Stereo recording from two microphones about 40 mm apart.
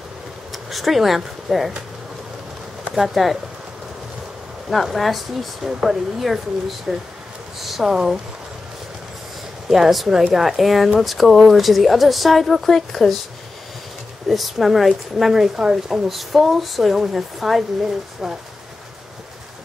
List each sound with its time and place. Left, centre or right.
0.5 s speech: centre
2.9 s a woman's voice: centre
4.6 s a woman's voice: centre
7.9 s speech: centre
9.7 s a woman's voice: centre
14.3 s a woman's voice: centre
15.5 s speech: centre
16.1 s a woman's voice: centre